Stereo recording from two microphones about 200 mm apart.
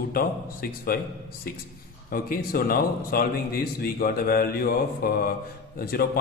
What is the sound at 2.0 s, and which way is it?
Speech, 45° left (ahead or behind).